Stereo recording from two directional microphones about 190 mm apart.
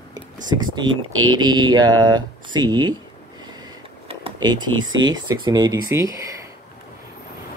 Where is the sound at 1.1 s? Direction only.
90° right.